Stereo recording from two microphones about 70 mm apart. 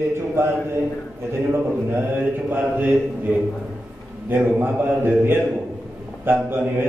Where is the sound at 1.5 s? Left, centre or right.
Right.